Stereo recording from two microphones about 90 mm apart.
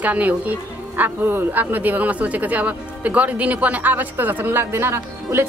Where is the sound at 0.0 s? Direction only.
15° right (ahead or behind).